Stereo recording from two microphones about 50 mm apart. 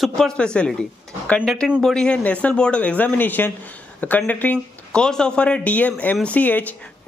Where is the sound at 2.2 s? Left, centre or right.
Left.